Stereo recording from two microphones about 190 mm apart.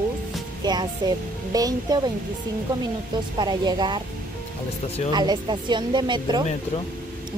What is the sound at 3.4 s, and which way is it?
Speech, 20° right (ahead or behind).